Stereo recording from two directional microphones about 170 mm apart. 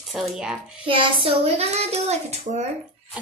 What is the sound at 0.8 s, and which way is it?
A child's voice, 30° right (ahead or behind).